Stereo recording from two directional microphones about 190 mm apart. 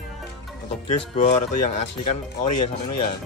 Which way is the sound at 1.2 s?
35° left (ahead or behind).